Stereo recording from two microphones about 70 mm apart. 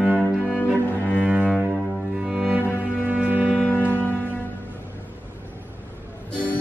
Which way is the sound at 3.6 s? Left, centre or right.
Left.